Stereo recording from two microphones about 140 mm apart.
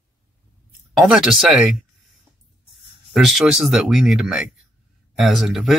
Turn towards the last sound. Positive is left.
turn(degrees=0)  # may be behind; listen again after turning